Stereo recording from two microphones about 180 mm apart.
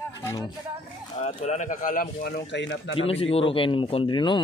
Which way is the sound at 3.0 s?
35° left (ahead or behind).